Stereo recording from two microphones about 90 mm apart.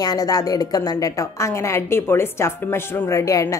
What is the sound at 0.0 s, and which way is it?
A woman's voice, 45° left (ahead or behind).